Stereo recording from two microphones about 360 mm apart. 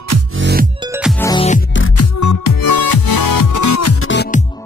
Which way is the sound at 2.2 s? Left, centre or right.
Left.